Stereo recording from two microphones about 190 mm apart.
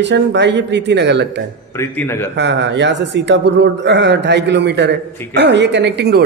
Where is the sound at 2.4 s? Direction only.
65° right (ahead or behind).